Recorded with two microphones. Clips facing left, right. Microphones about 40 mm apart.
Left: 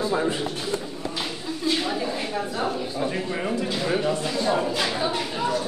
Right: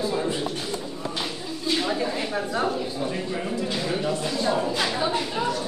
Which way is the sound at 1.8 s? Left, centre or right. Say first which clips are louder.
Right 1 dB; centre.